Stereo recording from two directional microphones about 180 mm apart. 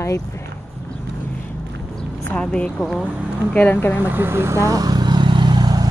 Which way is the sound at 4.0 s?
10° right (ahead or behind).